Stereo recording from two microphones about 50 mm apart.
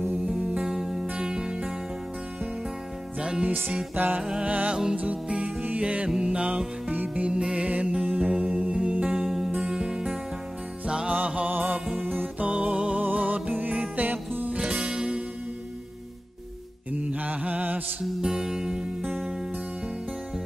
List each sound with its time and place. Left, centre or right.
0.3 s music: right
3.2 s music: centre
3.9 s music: right
4.2 s music: centre
4.5 s music: right
6.9 s music: right
7.2 s music: centre; by 14.6 s right
14.6 s music: centre
17.0 s mantra: right
18.0 s music: centre